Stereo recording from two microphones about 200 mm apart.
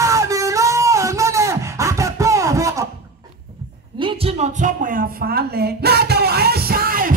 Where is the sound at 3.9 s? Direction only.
25° right (ahead or behind).